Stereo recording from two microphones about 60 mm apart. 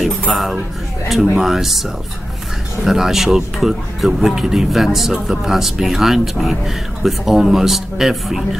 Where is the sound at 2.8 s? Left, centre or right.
Centre.